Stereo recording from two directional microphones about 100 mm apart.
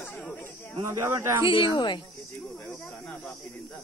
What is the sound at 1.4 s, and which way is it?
Speech, 55° left (ahead or behind).